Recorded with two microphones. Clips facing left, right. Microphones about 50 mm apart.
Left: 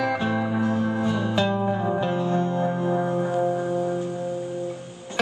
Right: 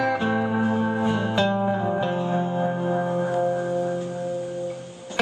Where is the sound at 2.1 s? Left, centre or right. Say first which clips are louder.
Left 1 dB; centre.